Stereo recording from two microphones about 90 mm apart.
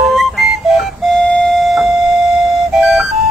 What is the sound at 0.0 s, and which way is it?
Music, centre (ahead or behind).